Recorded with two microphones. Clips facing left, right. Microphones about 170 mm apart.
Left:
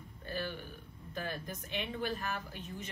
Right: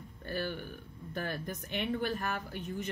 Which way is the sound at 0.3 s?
55° right (ahead or behind).